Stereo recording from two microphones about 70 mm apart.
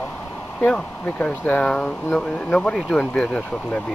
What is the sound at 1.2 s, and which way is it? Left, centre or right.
Speech, centre.